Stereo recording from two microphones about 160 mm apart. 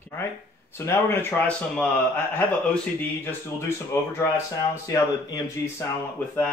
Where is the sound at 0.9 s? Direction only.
15° left (ahead or behind).